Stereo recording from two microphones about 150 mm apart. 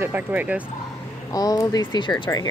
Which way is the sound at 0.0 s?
10° right (ahead or behind).